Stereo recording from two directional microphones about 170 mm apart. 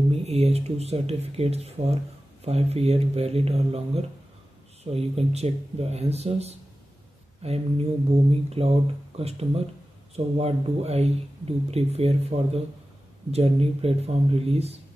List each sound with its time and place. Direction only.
0.1 s speech: 40° right (ahead or behind)